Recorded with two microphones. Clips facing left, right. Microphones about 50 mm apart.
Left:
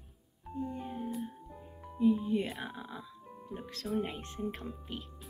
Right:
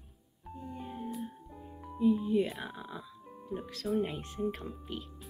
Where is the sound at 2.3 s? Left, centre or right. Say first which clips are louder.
Right 3 dB; left.